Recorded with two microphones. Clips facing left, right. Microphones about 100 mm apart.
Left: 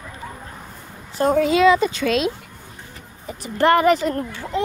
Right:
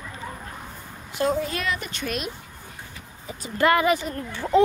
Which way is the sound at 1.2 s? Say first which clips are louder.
Left 4 dB; 40° left (ahead or behind).